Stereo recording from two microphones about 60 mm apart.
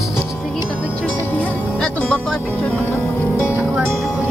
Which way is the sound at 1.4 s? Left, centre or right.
Left.